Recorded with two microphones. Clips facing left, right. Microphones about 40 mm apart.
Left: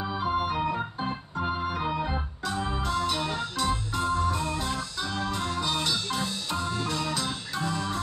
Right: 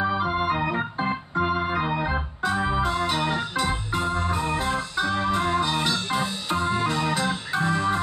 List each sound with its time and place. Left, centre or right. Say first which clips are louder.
0.0 s organ: right 4 dB; right